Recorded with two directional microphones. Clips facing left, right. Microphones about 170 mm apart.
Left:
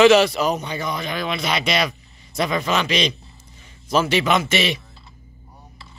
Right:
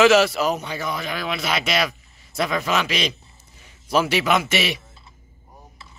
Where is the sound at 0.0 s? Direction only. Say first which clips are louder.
Left 2 dB; 5° right (ahead or behind).